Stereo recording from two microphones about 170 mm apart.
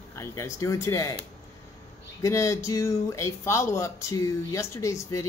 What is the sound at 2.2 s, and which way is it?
Speech, 15° left (ahead or behind).